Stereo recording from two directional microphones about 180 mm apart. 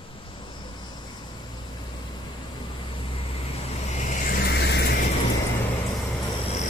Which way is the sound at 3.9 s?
40° left (ahead or behind).